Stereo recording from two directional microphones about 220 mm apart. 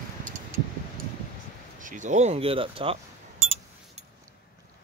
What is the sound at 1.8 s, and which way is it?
Speech, 35° right (ahead or behind).